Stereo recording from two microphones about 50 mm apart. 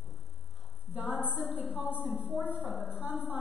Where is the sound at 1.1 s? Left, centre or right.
Right.